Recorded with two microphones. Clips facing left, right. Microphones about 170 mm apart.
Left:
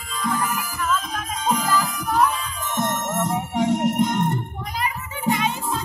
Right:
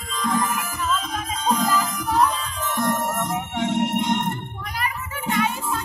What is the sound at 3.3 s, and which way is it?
Music, 35° left (ahead or behind).